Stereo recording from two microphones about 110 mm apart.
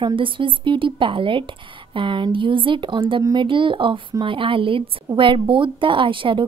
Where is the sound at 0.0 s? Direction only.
50° right (ahead or behind).